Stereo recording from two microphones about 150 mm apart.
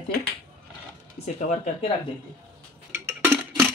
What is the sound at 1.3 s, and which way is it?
Speech, 55° left (ahead or behind).